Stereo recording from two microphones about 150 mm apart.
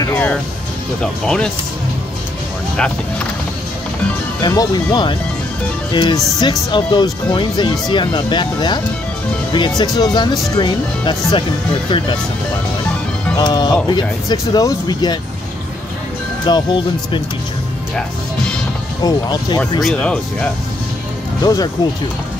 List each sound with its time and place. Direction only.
0.1 s music: 10° left (ahead or behind)
1.0 s speech: 5° left (ahead or behind)
4.4 s speech: 25° left (ahead or behind)
13.4 s speech: 30° left (ahead or behind)
16.4 s speech: 30° left (ahead or behind)
19.0 s speech: 25° left (ahead or behind)
19.8 s speech: 5° left (ahead or behind)
21.4 s speech: 25° left (ahead or behind)